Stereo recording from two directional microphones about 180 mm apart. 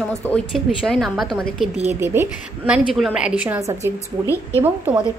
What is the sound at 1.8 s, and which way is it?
A woman's voice, 10° right (ahead or behind).